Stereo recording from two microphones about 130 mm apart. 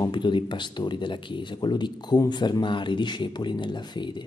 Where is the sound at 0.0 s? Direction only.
35° left (ahead or behind).